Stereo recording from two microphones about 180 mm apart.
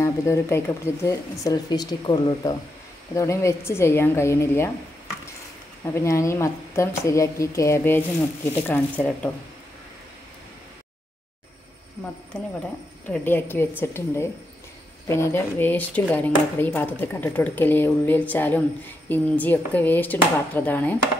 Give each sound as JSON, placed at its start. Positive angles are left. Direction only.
{"t": 0.0, "sound": "speech", "side_deg": 15}
{"t": 5.9, "sound": "speech", "side_deg": 15}
{"t": 12.3, "sound": "speech", "side_deg": 5}